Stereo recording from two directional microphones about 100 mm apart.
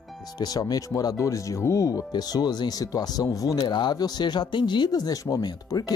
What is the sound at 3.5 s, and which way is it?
Speech, 50° left (ahead or behind).